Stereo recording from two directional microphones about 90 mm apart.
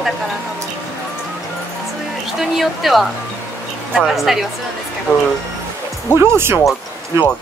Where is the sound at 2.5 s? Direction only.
Centre (ahead or behind).